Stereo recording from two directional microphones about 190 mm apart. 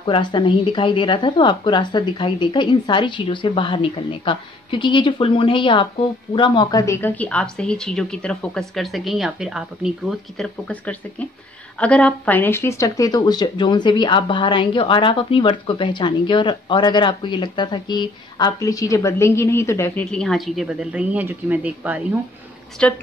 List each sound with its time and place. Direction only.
0.0 s speech: 25° left (ahead or behind)
20.1 s speech: 5° left (ahead or behind)
22.8 s speech: 5° left (ahead or behind)